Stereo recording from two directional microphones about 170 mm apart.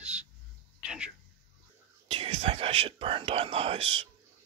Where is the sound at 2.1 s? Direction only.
35° right (ahead or behind).